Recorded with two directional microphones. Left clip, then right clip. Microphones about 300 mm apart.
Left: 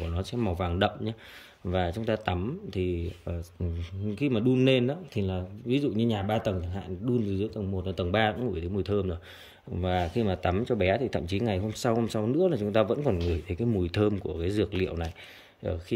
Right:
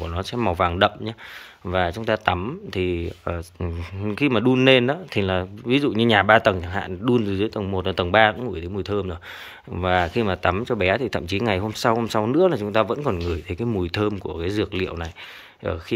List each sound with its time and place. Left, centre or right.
0.0 s speech: centre